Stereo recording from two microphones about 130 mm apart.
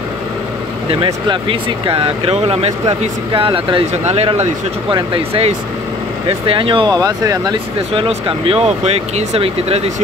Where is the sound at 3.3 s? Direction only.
40° right (ahead or behind).